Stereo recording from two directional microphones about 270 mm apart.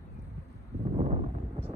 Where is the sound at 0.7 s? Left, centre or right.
Right.